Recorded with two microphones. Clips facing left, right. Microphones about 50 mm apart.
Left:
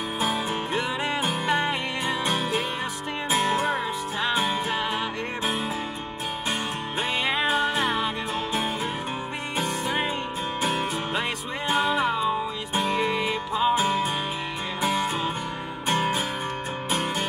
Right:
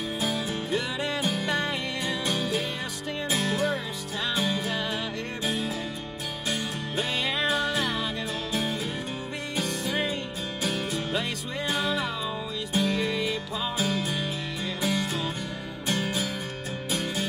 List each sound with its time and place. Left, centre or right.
0.2 s music: left
2.3 s music: left
7.0 s music: centre
9.6 s music: centre